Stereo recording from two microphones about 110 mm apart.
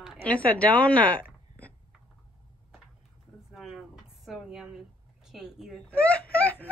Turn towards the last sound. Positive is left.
turn(degrees=15)  # may be behind; listen again after turning